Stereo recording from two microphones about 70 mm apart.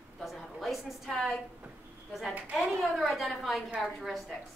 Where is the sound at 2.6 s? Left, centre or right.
Centre.